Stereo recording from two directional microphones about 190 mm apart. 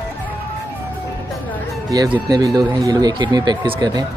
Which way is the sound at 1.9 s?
20° right (ahead or behind).